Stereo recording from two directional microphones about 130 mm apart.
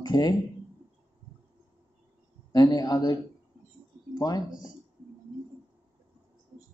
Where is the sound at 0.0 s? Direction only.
35° left (ahead or behind).